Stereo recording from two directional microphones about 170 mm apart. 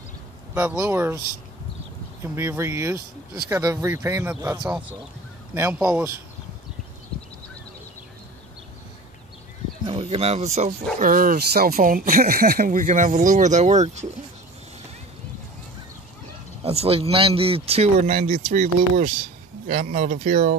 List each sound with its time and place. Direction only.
0.6 s speech: 10° right (ahead or behind)
2.3 s speech: 15° right (ahead or behind)
9.8 s speech: 35° right (ahead or behind)
11.0 s speech: 55° right (ahead or behind)
16.6 s a man's voice: 35° right (ahead or behind); by 20.5 s 55° right (ahead or behind)